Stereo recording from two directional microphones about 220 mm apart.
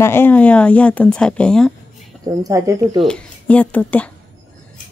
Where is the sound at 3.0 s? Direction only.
5° left (ahead or behind).